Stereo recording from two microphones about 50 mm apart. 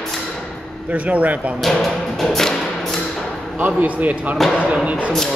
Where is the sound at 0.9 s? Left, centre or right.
Right.